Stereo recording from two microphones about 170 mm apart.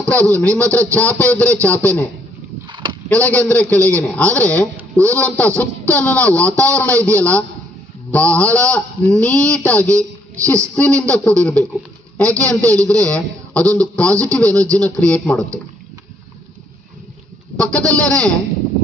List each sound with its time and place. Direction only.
0.3 s a man's voice: 10° left (ahead or behind)
2.7 s a sound: 30° right (ahead or behind)
3.1 s a man's voice: 10° left (ahead or behind)
17.6 s speech: 5° left (ahead or behind)